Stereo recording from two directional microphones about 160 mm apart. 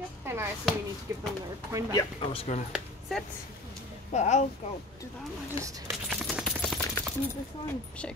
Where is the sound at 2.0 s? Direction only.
35° left (ahead or behind).